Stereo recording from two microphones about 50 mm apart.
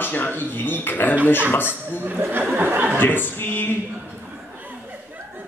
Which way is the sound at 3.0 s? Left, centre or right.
Left.